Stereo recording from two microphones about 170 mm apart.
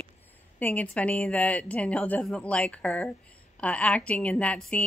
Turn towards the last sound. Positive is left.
turn(degrees=5)  # may be behind; listen again after turning